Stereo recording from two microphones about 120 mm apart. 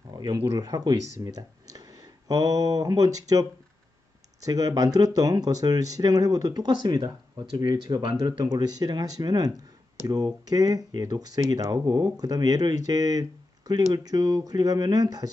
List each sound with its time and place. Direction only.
0.1 s speech: 35° right (ahead or behind)